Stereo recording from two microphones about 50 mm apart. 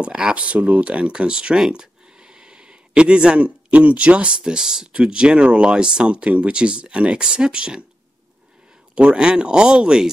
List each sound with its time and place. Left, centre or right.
0.0 s speech: right
8.9 s speech: centre